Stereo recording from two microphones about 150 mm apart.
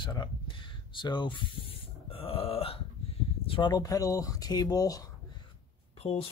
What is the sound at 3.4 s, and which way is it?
Speech, 35° left (ahead or behind).